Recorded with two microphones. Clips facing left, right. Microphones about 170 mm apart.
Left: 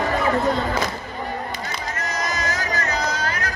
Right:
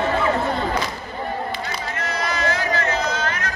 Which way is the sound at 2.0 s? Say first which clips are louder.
Right 2 dB; 45° left (ahead or behind).